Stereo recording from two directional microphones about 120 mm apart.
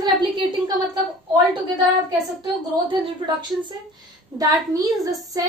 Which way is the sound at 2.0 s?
40° right (ahead or behind).